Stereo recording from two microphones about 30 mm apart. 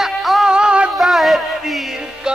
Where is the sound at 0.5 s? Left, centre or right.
Right.